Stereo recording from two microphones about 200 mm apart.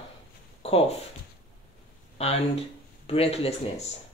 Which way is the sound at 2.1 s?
30° left (ahead or behind).